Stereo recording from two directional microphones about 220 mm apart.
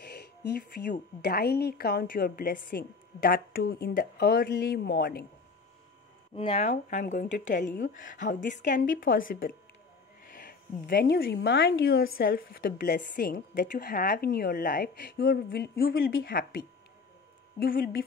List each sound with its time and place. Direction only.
0.0 s a woman's voice: 45° left (ahead or behind)
6.3 s a woman's voice: 25° left (ahead or behind); by 18.0 s 40° left (ahead or behind)